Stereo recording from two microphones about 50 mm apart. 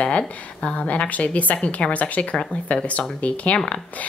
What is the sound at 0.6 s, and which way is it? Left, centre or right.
A woman's voice, left.